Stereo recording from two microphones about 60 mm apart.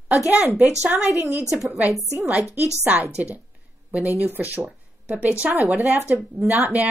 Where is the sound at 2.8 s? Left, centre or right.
Right.